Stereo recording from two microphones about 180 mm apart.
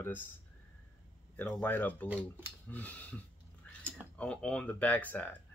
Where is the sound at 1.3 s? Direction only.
10° left (ahead or behind).